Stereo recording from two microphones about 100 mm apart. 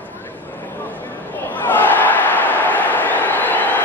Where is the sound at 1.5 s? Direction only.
20° left (ahead or behind).